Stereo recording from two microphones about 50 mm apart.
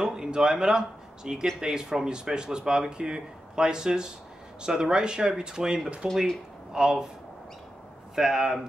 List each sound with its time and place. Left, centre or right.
0.0 s speech: centre
8.2 s speech: centre